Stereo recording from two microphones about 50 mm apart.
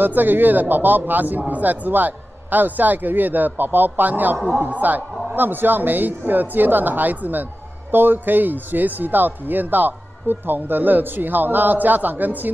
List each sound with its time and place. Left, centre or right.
0.0 s speech: right